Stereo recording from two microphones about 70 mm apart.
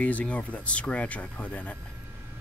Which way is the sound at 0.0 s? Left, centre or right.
Centre.